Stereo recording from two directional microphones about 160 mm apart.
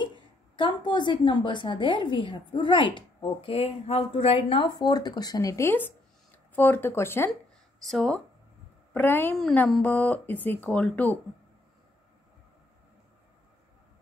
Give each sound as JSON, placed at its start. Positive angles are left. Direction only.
{"t": 0.6, "sound": "a woman's voice", "side_deg": 30}
{"t": 7.8, "sound": "speech", "side_deg": 5}